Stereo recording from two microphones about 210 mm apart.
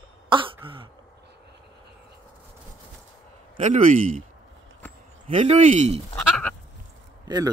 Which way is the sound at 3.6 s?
35° right (ahead or behind).